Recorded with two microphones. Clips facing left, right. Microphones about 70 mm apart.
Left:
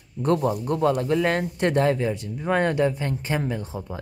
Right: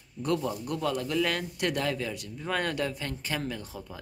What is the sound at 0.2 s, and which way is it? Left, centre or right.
A man's voice, left.